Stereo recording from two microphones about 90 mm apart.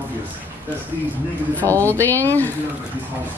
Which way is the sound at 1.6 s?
35° right (ahead or behind).